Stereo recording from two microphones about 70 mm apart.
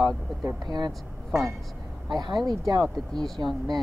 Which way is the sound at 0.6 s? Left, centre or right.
Right.